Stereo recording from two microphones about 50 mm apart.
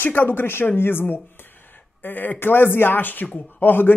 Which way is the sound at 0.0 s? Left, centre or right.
Left.